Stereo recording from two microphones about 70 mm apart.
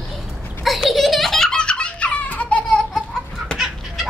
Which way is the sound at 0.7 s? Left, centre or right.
Centre.